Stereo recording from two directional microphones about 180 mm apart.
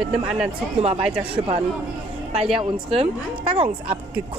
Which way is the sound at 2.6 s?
35° right (ahead or behind).